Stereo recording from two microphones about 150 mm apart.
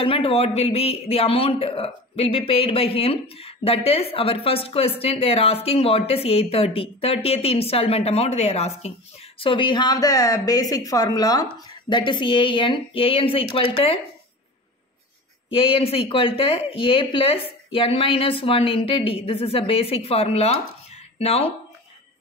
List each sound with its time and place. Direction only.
0.0 s a man's voice: 40° left (ahead or behind)
15.5 s a man's voice: 35° left (ahead or behind)